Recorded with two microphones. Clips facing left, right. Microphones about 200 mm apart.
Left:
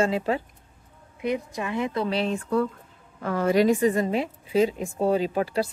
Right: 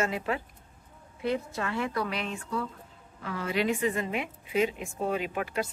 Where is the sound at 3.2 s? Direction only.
45° left (ahead or behind).